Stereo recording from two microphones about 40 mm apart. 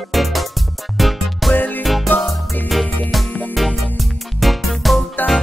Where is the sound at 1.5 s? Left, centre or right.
Left.